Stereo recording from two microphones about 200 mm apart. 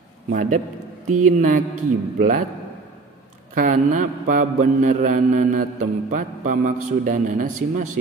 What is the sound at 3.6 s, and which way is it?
Mantra, 40° right (ahead or behind).